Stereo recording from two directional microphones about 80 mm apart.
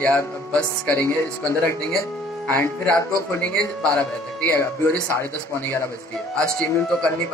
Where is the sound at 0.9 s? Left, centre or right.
Left.